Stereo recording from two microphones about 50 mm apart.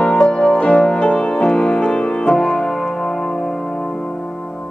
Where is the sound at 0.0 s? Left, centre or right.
Centre.